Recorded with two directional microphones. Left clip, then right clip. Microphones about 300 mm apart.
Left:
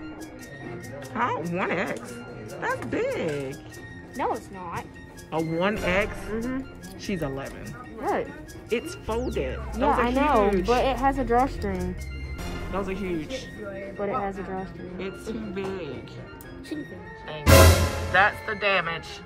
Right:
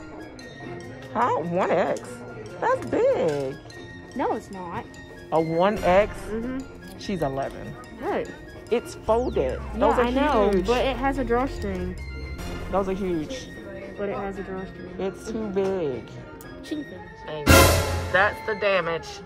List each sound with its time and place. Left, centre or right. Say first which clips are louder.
1.1 s speech: right 4 dB; centre
4.2 s speech: right 2 dB; right
5.3 s speech: right 5 dB; centre
12.4 s music: right 5 dB; centre
13.9 s speech: left 1 dB; centre
18.1 s speech: even; centre